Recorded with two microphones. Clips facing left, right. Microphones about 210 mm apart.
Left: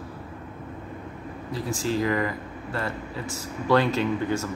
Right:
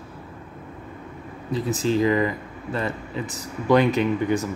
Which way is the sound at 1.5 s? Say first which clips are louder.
Right 5 dB; 20° right (ahead or behind).